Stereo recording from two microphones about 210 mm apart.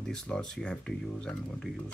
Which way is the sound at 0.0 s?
5° left (ahead or behind).